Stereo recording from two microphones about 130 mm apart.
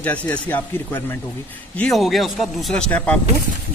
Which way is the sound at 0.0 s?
10° left (ahead or behind).